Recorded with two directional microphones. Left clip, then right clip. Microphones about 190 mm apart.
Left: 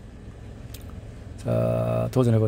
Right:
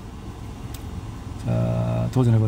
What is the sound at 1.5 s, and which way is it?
Speech, 25° left (ahead or behind).